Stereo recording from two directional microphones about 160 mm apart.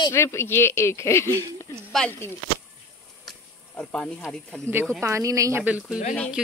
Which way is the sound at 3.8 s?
5° left (ahead or behind).